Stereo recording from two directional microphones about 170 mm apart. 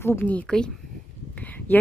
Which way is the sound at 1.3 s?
10° left (ahead or behind).